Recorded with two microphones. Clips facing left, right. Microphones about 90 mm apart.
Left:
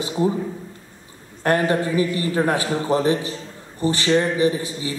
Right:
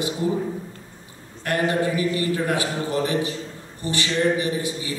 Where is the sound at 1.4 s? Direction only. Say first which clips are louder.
Left 3 dB; 30° left (ahead or behind).